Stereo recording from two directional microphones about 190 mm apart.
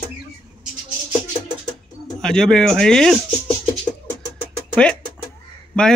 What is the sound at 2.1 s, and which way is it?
Speech, 5° left (ahead or behind).